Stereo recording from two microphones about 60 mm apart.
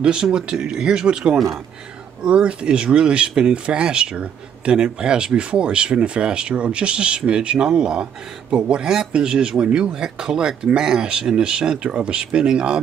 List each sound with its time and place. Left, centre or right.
0.0 s speech: centre